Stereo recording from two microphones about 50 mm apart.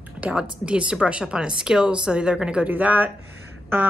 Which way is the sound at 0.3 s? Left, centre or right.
Centre.